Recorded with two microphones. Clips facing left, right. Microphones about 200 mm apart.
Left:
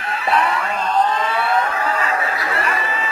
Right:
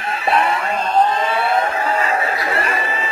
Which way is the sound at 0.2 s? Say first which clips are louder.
Right 1 dB; 25° right (ahead or behind).